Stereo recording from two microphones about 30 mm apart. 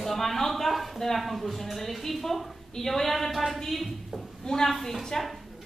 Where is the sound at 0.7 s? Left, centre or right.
Centre.